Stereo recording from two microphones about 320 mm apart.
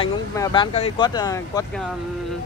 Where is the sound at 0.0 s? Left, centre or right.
Centre.